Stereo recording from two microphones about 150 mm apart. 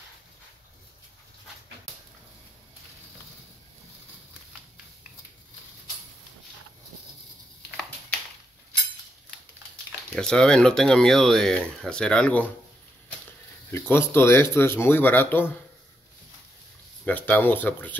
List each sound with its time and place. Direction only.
10.1 s speech: 5° left (ahead or behind)
13.7 s speech: 15° left (ahead or behind)
17.0 s speech: 10° left (ahead or behind)